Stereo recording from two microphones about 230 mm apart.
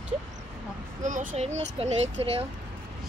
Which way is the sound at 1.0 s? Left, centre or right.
Right.